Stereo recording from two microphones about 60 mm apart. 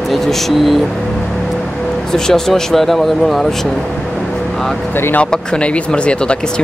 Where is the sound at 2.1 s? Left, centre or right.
Centre.